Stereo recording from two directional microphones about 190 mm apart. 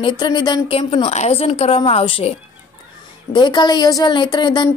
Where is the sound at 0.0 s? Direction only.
25° left (ahead or behind).